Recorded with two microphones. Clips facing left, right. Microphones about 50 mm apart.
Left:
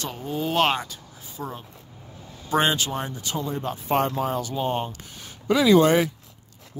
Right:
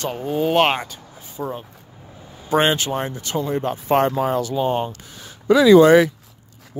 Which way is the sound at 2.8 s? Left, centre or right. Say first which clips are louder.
Right 5 dB; right.